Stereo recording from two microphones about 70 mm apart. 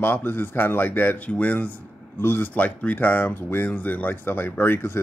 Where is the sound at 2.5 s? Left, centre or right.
Centre.